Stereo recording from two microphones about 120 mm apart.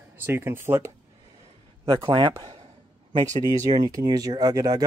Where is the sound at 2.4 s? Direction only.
50° right (ahead or behind).